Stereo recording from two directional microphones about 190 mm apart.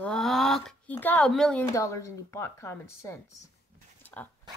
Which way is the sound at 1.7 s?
15° left (ahead or behind).